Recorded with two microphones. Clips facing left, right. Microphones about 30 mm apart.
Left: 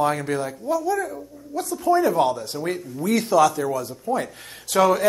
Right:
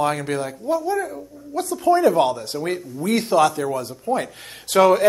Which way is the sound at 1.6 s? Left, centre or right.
Right.